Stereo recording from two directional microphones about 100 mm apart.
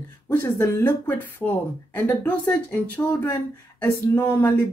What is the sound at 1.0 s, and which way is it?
Speech, 15° left (ahead or behind).